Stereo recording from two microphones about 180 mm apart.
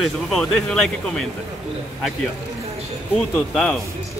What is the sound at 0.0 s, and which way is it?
Speech, centre (ahead or behind).